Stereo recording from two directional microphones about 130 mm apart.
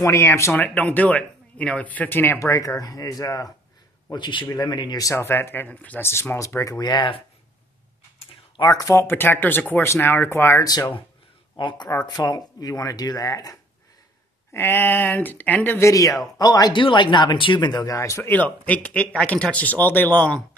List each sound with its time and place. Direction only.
0.0 s speech: 25° left (ahead or behind)
8.6 s speech: 25° left (ahead or behind)
11.5 s speech: 35° left (ahead or behind); by 20.4 s 10° left (ahead or behind)